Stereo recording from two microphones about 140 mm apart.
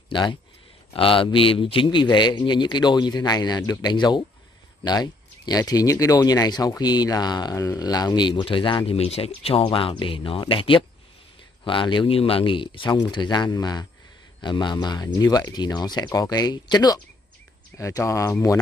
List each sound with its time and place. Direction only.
0.1 s speech: 35° left (ahead or behind)